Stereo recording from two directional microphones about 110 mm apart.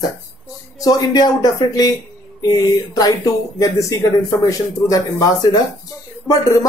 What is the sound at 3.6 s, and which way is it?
Speech, 30° left (ahead or behind).